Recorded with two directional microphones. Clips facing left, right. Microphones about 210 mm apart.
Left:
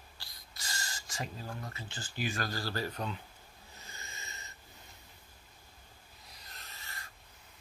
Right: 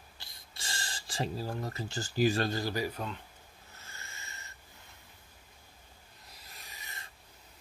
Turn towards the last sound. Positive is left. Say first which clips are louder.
# even
turn(degrees=-15)  # may be behind; listen again after turning